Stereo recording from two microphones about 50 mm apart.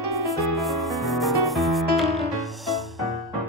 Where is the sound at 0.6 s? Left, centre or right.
Centre.